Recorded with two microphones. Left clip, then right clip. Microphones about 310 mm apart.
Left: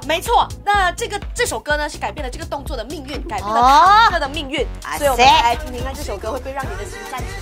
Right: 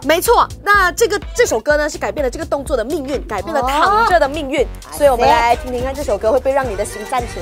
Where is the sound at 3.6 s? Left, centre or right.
Left.